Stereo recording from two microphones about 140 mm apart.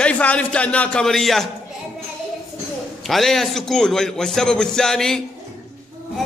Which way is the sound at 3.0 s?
Centre (ahead or behind).